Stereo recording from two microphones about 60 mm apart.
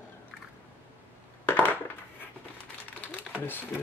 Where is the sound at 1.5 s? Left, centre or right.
Left.